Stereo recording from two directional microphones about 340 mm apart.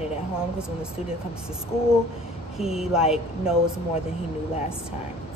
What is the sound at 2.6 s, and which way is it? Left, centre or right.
Speech, centre.